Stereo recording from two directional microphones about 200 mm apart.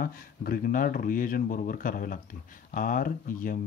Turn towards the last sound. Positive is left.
turn(degrees=45)  # may be behind; listen again after turning